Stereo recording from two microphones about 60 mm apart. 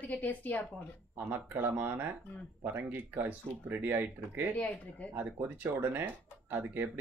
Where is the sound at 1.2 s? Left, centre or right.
Right.